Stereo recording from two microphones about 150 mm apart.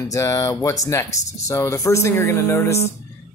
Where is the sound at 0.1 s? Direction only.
20° left (ahead or behind).